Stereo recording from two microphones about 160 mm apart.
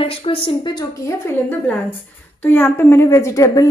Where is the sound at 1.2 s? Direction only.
10° left (ahead or behind).